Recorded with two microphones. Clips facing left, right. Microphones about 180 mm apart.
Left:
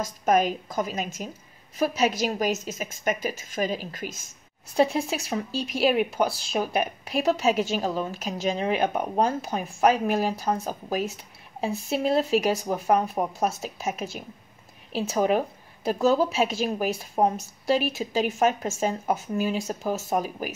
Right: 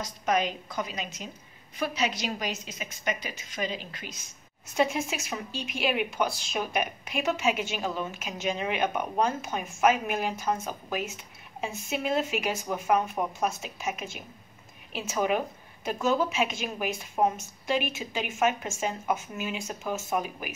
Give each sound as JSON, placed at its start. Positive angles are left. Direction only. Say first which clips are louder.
{"t": 0.0, "sound": "a woman's voice", "louder": "left 5 dB", "side_deg": 50}
{"t": 4.7, "sound": "speech", "louder": "left 4 dB", "side_deg": 35}